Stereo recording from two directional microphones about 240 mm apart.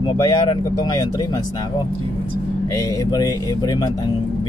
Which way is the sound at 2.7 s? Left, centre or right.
Centre.